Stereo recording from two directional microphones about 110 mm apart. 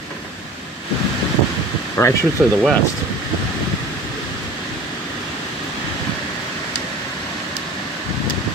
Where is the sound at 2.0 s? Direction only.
25° left (ahead or behind).